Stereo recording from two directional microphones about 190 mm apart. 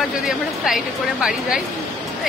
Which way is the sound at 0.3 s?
Centre (ahead or behind).